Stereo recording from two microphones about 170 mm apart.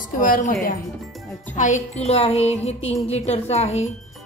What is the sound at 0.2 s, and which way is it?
Speech, 55° left (ahead or behind).